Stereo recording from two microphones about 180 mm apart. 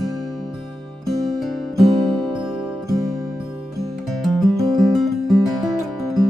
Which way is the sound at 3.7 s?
Centre (ahead or behind).